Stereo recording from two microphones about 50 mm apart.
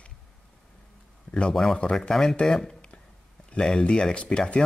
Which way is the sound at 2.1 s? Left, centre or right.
Centre.